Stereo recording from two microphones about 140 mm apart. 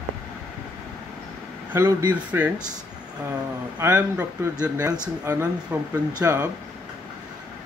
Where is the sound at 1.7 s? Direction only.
15° right (ahead or behind).